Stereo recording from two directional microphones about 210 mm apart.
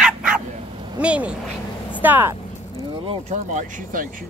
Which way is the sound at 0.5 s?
25° right (ahead or behind).